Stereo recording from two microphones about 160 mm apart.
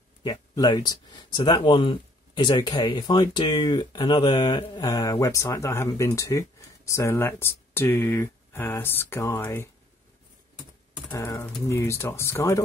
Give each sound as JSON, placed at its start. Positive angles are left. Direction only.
{"t": 0.2, "sound": "speech", "side_deg": 25}
{"t": 11.1, "sound": "speech", "side_deg": 15}